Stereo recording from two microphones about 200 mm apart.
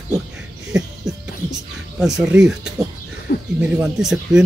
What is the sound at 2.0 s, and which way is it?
Speech, 5° right (ahead or behind).